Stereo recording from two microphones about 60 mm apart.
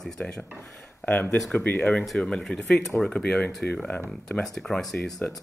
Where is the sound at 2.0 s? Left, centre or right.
Centre.